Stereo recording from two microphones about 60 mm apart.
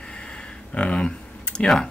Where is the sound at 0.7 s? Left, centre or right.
Centre.